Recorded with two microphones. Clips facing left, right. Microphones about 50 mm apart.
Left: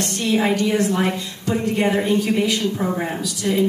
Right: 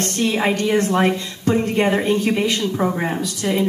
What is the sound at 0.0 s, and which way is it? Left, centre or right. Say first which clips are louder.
A woman's voice: right 1 dB; right.